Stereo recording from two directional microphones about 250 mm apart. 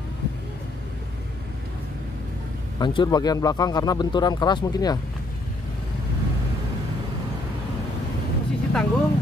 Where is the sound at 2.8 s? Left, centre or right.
Centre.